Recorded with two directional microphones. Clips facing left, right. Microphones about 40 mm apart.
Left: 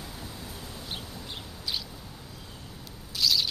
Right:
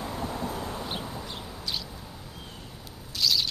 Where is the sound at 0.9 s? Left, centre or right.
Centre.